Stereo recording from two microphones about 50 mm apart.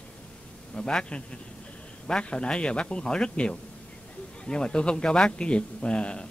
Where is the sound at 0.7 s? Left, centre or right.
Centre.